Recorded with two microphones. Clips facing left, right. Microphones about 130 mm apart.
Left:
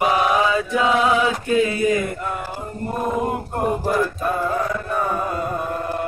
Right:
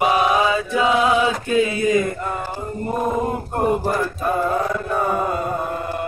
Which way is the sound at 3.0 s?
Centre (ahead or behind).